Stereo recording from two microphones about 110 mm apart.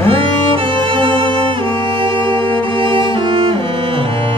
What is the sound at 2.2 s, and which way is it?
Music, 50° right (ahead or behind).